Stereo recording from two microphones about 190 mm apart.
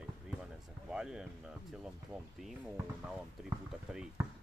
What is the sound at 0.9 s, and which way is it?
Speech, 5° right (ahead or behind).